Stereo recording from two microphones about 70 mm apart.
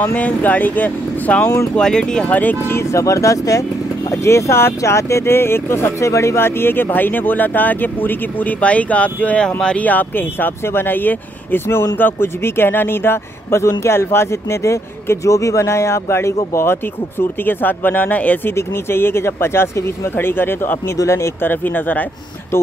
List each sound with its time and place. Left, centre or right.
0.0 s speech: left
1.8 s speech: centre
2.6 s speech: left
18.5 s speech: left
20.9 s speech: left
21.5 s speech: left